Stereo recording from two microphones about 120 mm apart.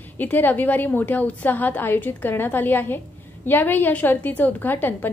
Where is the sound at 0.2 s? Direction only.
15° left (ahead or behind).